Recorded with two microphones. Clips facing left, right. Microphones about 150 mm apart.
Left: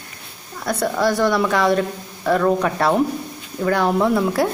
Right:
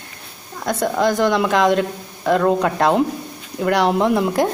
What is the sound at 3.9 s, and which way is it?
Speech, 20° right (ahead or behind).